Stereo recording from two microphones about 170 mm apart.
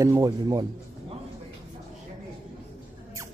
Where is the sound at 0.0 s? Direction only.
20° right (ahead or behind).